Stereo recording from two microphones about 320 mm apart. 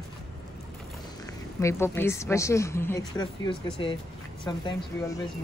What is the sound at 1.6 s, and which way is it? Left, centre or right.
A woman's voice, centre.